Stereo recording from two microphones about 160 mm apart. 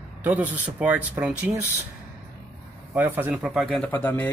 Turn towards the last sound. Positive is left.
turn(degrees=10)  # may be behind; listen again after turning